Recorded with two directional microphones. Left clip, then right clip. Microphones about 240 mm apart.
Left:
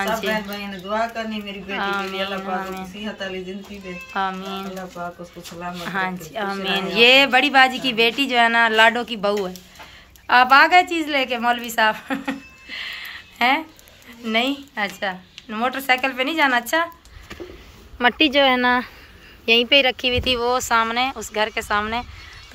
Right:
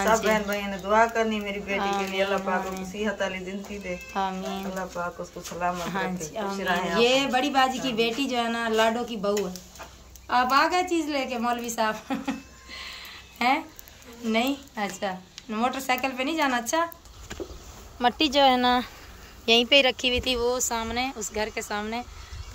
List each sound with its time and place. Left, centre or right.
0.0 s speech: centre
1.8 s speech: centre
4.1 s speech: centre
5.0 s speech: centre
5.9 s a woman's voice: centre
17.9 s speech: centre